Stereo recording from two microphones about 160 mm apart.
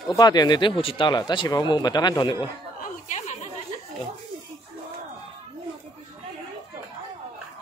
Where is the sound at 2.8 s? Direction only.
45° left (ahead or behind).